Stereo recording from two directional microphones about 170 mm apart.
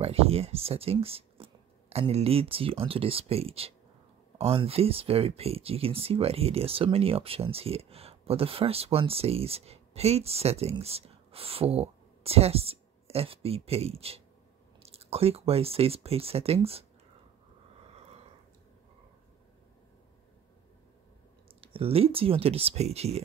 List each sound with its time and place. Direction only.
0.0 s speech: 35° right (ahead or behind)
17.9 s a sound: 40° right (ahead or behind)
21.5 s speech: 35° right (ahead or behind)